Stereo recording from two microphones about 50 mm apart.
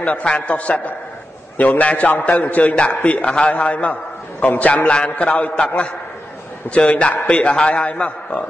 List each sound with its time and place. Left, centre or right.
0.0 s a man's voice: left